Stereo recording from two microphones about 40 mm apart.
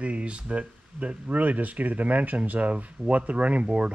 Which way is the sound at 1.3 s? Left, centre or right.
Right.